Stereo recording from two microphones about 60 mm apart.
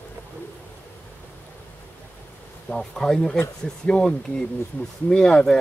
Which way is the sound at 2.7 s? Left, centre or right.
Centre.